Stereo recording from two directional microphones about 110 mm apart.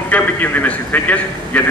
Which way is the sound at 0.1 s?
15° left (ahead or behind).